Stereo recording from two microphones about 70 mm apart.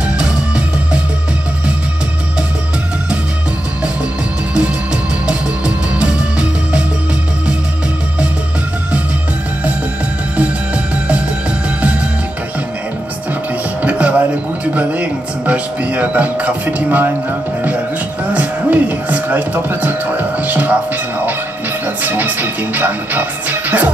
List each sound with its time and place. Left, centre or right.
5.9 s music: centre
10.3 s music: centre
13.8 s a sound: centre
14.6 s music: right
18.3 s speech: right
21.8 s speech: right